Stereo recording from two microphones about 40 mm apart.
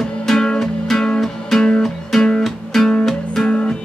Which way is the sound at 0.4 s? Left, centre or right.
Centre.